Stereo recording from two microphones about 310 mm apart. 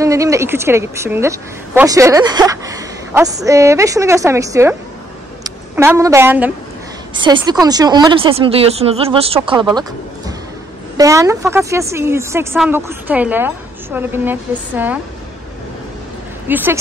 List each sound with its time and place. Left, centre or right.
0.0 s a woman's voice: centre
11.0 s a woman's voice: centre
16.4 s speech: centre